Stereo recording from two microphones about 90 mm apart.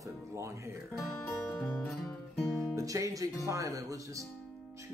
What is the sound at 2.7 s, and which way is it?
Speech, 40° right (ahead or behind).